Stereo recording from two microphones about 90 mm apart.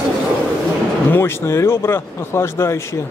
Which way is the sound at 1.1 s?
30° left (ahead or behind).